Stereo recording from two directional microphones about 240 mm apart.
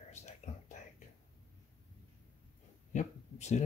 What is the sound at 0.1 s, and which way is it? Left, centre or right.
Whispering, left.